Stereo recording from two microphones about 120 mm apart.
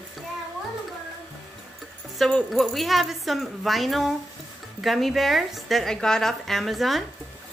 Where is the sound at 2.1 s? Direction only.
Centre (ahead or behind).